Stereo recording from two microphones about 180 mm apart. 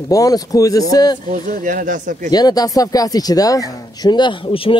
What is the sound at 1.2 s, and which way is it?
Speech, 45° right (ahead or behind).